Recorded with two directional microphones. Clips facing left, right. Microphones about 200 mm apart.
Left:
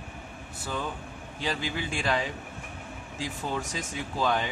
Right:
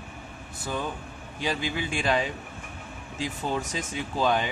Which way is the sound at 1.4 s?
15° right (ahead or behind).